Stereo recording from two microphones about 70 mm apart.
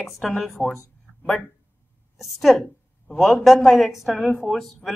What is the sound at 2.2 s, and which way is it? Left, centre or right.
Speech, centre.